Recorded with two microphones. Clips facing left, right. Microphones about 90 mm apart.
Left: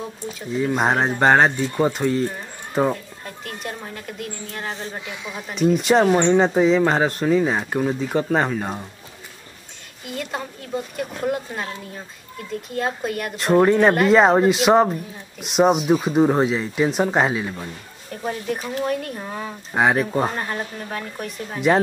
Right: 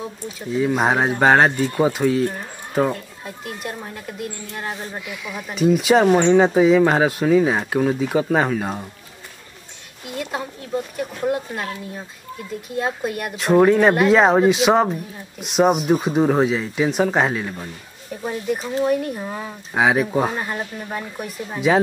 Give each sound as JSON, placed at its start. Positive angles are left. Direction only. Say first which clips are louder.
{"t": 0.3, "sound": "speech", "louder": "right 2 dB", "side_deg": -5}
{"t": 5.0, "sound": "speech", "louder": "right 1 dB", "side_deg": 25}
{"t": 5.5, "sound": "speech", "louder": "right 1 dB", "side_deg": -5}
{"t": 10.0, "sound": "speech", "louder": "right 1 dB", "side_deg": -5}
{"t": 18.1, "sound": "speech", "louder": "right 2 dB", "side_deg": -5}